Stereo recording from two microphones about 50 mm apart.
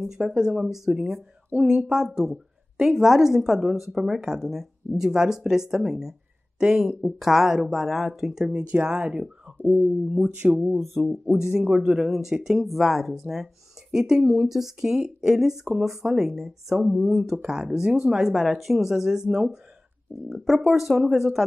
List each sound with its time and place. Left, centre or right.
0.2 s speech: centre
2.0 s speech: centre
8.5 s speech: right
20.2 s speech: centre